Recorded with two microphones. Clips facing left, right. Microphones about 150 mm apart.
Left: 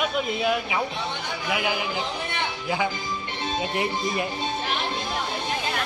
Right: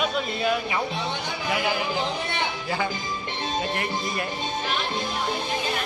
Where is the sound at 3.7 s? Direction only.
20° left (ahead or behind).